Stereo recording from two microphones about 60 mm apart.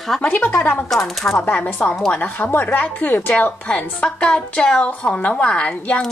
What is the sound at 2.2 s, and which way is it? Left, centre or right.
A woman's voice, left.